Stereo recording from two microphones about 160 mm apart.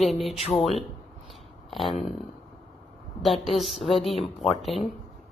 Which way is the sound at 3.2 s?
Centre (ahead or behind).